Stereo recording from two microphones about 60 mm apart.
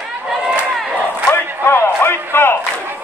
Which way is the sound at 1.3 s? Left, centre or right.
Left.